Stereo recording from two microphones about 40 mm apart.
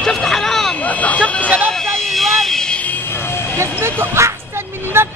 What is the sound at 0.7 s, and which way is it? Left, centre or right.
Speech, left.